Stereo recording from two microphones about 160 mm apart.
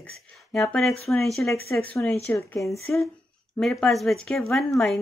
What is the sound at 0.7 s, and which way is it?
Speech, centre (ahead or behind).